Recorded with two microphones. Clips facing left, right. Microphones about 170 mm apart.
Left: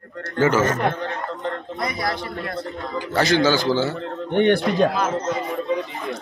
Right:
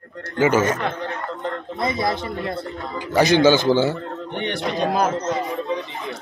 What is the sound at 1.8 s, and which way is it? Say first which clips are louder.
A man's voice: right 4 dB; 25° right (ahead or behind).